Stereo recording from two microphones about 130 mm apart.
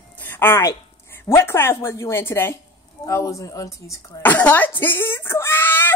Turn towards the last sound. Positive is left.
turn(degrees=15)  # may be behind; listen again after turning